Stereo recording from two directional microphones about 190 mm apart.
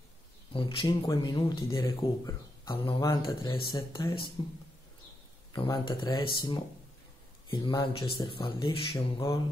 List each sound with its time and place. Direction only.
0.5 s speech: 25° left (ahead or behind)
5.5 s speech: 25° left (ahead or behind)
7.4 s speech: 25° left (ahead or behind)
8.9 s a sound: 15° left (ahead or behind)